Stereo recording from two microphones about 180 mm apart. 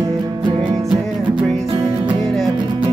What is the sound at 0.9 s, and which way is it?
Music, centre (ahead or behind).